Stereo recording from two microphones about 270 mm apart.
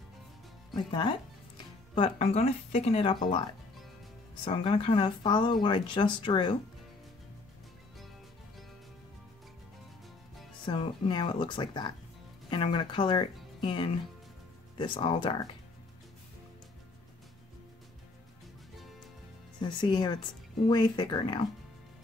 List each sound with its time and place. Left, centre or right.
0.7 s speech: centre
4.5 s speech: centre
10.6 s speech: centre
19.6 s speech: centre